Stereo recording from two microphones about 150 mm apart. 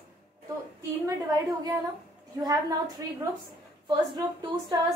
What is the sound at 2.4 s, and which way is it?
Speech, 25° right (ahead or behind).